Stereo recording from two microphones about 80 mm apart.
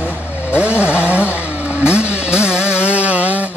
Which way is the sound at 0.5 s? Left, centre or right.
Centre.